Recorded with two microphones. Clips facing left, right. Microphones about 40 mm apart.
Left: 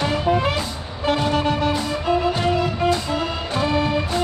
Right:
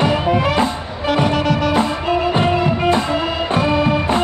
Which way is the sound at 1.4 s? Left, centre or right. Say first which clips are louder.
Right 3 dB; right.